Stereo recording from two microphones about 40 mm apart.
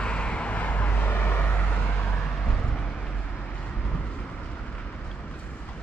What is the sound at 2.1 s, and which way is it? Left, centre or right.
Vehicle, left.